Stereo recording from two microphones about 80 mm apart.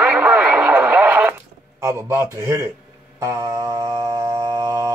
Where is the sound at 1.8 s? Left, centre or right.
Right.